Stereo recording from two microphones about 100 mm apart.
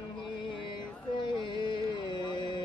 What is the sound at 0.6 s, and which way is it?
Music, 55° left (ahead or behind).